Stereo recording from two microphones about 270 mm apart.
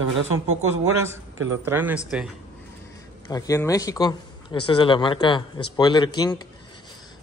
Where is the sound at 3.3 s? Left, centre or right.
Centre.